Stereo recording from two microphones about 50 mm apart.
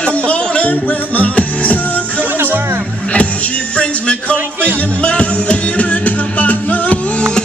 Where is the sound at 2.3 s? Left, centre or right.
Right.